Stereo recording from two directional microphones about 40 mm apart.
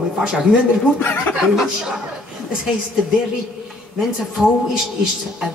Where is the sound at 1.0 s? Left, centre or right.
Left.